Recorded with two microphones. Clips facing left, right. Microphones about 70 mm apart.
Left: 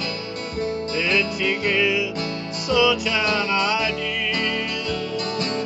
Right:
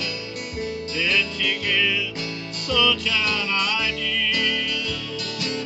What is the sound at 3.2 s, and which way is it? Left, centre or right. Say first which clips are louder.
Music: left 4 dB; left.